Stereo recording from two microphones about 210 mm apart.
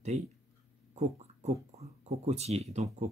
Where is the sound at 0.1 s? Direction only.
35° right (ahead or behind).